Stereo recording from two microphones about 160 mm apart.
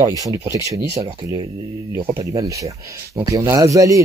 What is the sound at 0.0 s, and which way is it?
Speech, 20° right (ahead or behind).